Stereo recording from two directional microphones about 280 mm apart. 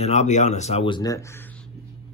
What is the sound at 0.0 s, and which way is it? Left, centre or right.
Speech, left.